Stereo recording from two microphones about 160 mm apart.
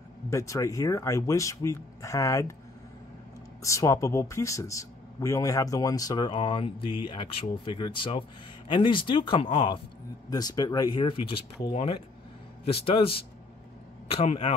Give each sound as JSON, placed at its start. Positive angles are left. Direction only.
{"t": 0.3, "sound": "speech", "side_deg": 20}
{"t": 3.6, "sound": "a man's voice", "side_deg": 20}